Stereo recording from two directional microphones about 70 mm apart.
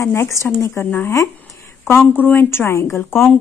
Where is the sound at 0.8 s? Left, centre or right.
Left.